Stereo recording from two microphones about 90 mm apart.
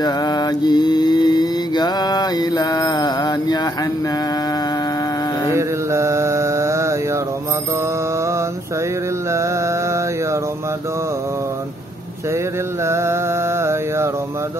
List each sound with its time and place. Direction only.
0.0 s mantra: 50° left (ahead or behind)
5.5 s mantra: 30° right (ahead or behind)
9.3 s mantra: 35° right (ahead or behind)
12.8 s mantra: 30° right (ahead or behind)